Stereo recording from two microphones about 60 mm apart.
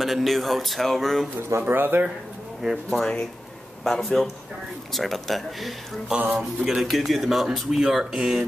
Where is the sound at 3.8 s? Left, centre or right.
Centre.